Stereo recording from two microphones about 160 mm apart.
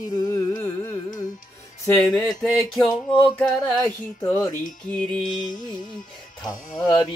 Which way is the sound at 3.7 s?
20° left (ahead or behind).